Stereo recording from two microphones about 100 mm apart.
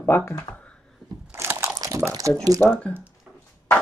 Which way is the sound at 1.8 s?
30° right (ahead or behind).